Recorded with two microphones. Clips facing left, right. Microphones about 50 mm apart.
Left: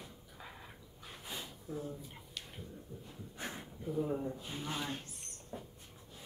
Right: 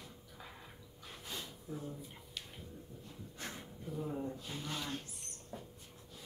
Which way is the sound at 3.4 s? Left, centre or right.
Centre.